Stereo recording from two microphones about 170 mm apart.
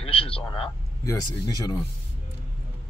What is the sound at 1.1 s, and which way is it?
Speech, 20° left (ahead or behind).